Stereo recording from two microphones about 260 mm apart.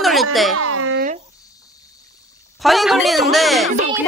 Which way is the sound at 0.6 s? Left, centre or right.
Right.